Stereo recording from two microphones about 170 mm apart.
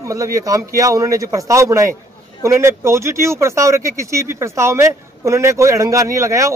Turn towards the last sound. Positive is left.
turn(degrees=-20)  # may be behind; listen again after turning